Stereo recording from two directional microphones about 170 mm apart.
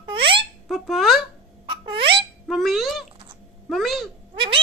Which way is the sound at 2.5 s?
Centre (ahead or behind).